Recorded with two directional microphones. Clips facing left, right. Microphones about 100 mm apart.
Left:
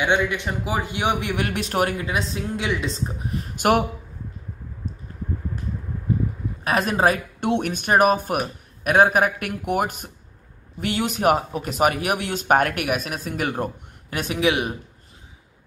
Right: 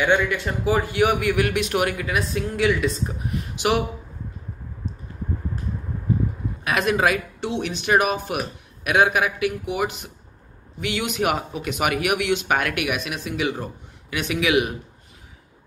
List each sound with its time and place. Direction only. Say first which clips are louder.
0.0 s a man's voice: right 1 dB; 20° left (ahead or behind)
3.5 s speech: left 3 dB; 50° left (ahead or behind)
4.8 s a sound: right 1 dB; 45° left (ahead or behind)
6.6 s speech: left 1 dB; 35° left (ahead or behind)
7.3 s speech: left 4 dB; 55° left (ahead or behind)
14.1 s speech: right 1 dB; 40° left (ahead or behind)